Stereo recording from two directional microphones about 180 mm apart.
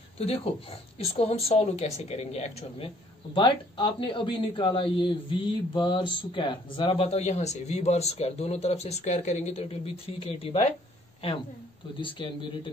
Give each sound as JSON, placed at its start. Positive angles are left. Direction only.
{"t": 0.2, "sound": "a man's voice", "side_deg": 35}
{"t": 3.3, "sound": "a man's voice", "side_deg": 25}
{"t": 12.0, "sound": "speech", "side_deg": 25}